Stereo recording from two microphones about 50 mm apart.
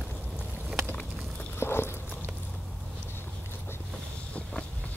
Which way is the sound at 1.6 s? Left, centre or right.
Left.